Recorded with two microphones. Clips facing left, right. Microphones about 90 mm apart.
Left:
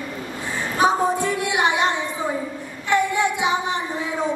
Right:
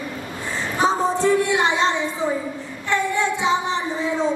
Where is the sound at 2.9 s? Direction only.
15° left (ahead or behind).